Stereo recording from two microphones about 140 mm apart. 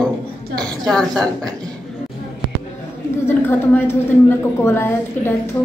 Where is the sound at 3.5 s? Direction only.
15° left (ahead or behind).